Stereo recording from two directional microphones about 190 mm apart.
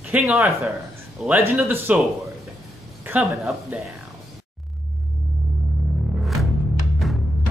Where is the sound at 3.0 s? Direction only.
15° right (ahead or behind).